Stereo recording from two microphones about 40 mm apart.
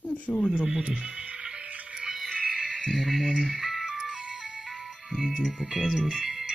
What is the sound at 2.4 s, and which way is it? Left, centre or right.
Music, centre.